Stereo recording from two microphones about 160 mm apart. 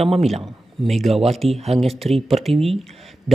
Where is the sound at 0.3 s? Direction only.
Centre (ahead or behind).